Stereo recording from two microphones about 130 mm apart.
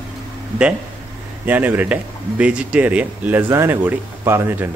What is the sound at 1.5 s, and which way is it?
Speech, 15° right (ahead or behind).